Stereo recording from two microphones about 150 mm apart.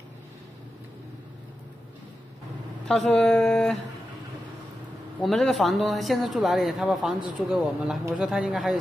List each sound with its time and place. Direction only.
2.9 s speech: 5° left (ahead or behind)
5.2 s speech: centre (ahead or behind)